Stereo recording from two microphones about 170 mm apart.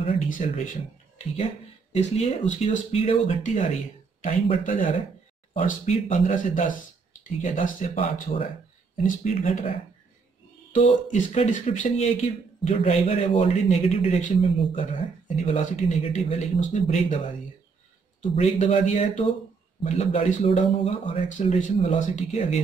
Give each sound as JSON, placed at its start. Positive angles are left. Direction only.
{"t": 0.3, "sound": "speech", "side_deg": 50}
{"t": 10.7, "sound": "speech", "side_deg": 45}
{"t": 18.3, "sound": "speech", "side_deg": 35}
{"t": 21.4, "sound": "speech", "side_deg": 45}